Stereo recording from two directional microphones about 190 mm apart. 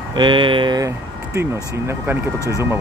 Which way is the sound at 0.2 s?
25° right (ahead or behind).